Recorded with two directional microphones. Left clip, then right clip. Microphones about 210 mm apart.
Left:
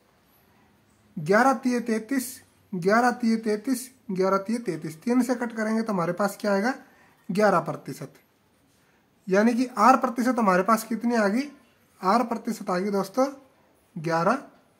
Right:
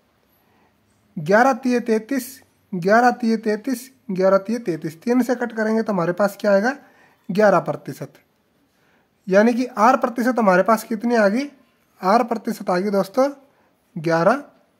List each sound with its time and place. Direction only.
1.2 s speech: 40° right (ahead or behind)
9.2 s speech: 40° right (ahead or behind)